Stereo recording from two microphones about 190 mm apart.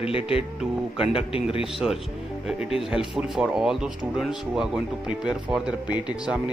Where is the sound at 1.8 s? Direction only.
5° right (ahead or behind).